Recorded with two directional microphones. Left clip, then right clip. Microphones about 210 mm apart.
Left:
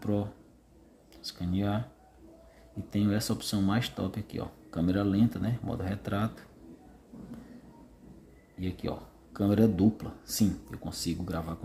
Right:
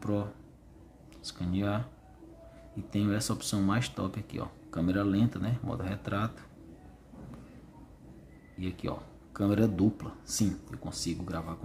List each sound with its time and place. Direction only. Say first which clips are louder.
0.0 s speech: left 1 dB; centre (ahead or behind)
2.9 s speech: left 1 dB; centre (ahead or behind)
8.5 s speech: left 1 dB; 5° left (ahead or behind)